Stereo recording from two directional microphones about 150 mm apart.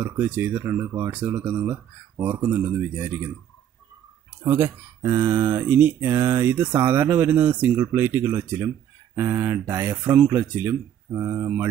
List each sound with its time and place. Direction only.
0.0 s speech: 15° right (ahead or behind)
4.4 s speech: 15° right (ahead or behind)